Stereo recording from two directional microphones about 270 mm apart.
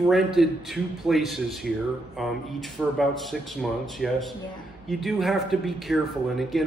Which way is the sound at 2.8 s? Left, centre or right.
Centre.